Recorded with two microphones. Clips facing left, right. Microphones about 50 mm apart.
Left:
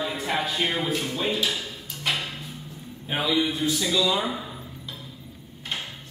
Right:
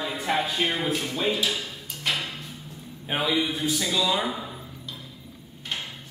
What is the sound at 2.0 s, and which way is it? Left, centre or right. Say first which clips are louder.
Music: even; centre.